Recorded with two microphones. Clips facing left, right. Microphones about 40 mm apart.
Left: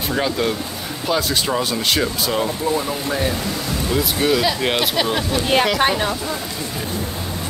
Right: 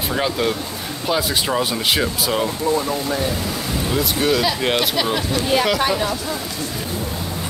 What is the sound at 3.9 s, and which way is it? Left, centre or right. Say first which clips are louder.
Speech: left 1 dB; centre.